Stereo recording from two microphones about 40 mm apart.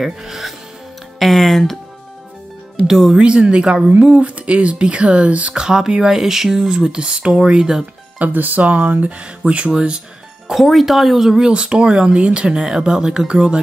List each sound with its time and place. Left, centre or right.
0.0 s speech: centre
2.9 s speech: centre
3.2 s speech: right
4.1 s speech: right
5.5 s speech: centre
8.2 s speech: right
9.2 s speech: right
9.7 s speech: centre
10.5 s speech: centre
11.4 s speech: right